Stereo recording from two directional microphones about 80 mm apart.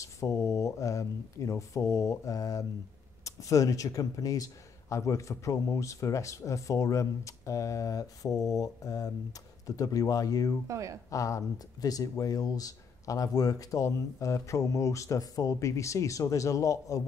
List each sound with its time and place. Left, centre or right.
0.0 s speech: left
10.7 s speech: right
11.1 s speech: left